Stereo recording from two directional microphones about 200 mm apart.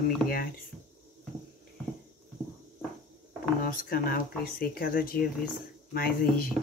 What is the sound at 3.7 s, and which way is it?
Speech, 45° left (ahead or behind).